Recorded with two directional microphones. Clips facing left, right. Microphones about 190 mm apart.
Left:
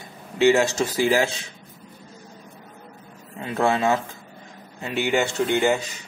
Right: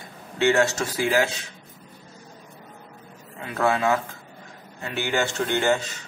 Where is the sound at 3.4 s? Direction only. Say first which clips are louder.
Left 1 dB; 25° left (ahead or behind).